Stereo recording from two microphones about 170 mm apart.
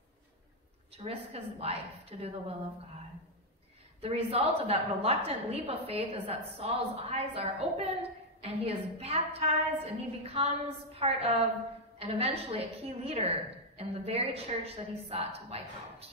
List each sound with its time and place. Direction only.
0.9 s a woman's voice: 35° right (ahead or behind)
4.0 s a woman's voice: 35° right (ahead or behind)